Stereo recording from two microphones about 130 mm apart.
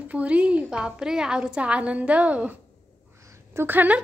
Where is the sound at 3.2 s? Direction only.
20° right (ahead or behind).